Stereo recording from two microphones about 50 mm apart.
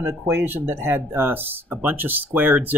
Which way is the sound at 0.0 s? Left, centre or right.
Right.